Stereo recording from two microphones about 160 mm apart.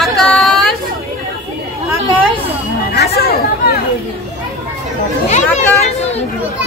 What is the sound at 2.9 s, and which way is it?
Speech, 80° left.